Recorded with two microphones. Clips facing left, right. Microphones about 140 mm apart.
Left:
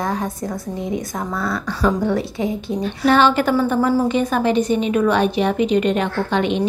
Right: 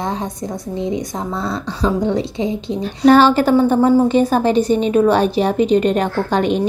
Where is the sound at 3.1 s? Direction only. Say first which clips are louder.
Right 4 dB; 35° right (ahead or behind).